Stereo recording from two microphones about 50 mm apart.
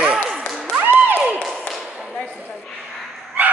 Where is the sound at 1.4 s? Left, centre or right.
Centre.